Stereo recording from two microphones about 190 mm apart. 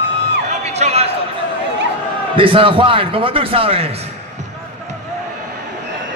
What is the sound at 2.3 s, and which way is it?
A man's voice, 25° right (ahead or behind).